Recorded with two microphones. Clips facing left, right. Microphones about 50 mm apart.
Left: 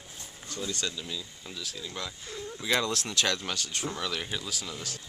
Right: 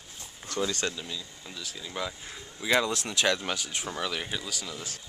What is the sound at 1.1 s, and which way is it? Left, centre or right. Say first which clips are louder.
Speech: left 1 dB; centre.